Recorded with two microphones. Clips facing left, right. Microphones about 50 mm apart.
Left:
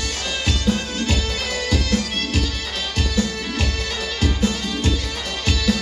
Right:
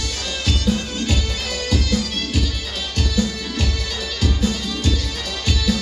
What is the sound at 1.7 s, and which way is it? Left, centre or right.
Music, centre.